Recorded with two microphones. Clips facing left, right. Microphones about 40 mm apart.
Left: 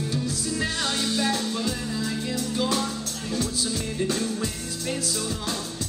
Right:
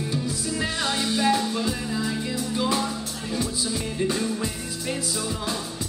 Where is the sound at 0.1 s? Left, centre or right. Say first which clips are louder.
Even; centre.